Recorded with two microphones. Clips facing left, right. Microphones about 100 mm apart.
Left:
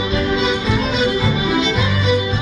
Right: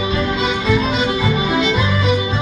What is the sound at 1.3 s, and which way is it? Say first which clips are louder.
Music: right 1 dB; 45° right (ahead or behind).